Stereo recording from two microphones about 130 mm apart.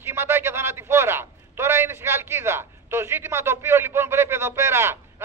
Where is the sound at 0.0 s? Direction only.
20° right (ahead or behind).